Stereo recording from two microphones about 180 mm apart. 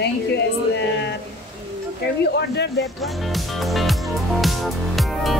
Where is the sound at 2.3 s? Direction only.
70° left (ahead or behind).